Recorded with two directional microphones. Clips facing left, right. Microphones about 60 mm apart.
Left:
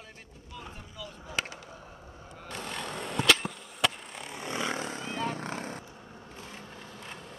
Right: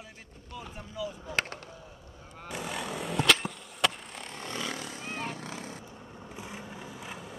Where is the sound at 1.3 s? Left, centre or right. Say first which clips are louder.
Right 1 dB; right.